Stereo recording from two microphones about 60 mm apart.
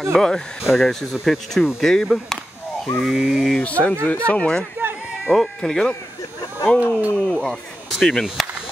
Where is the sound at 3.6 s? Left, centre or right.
Left; by 5.9 s centre.